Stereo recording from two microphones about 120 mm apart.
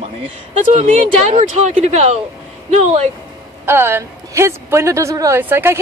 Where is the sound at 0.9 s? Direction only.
70° right (ahead or behind).